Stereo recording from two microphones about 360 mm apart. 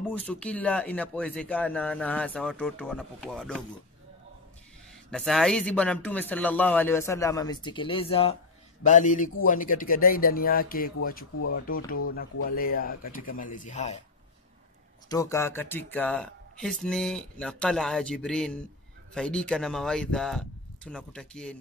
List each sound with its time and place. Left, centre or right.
0.1 s speech: centre
5.1 s a man's voice: centre
15.0 s speech: centre